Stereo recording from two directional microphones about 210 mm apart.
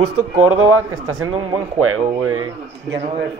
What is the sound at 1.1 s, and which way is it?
Speech, 20° right (ahead or behind).